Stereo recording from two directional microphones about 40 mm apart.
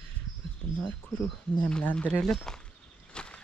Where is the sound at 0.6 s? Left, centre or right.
Centre.